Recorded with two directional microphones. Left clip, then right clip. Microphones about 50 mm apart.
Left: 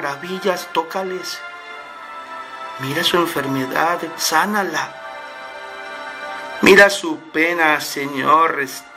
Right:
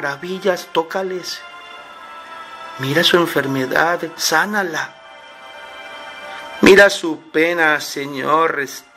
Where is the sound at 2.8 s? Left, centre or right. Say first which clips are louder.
Right 3 dB; right.